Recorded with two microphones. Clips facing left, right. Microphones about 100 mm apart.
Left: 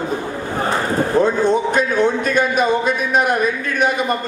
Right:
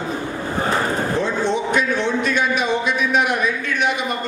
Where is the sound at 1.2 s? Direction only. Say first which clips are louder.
Left 5 dB; 45° left (ahead or behind).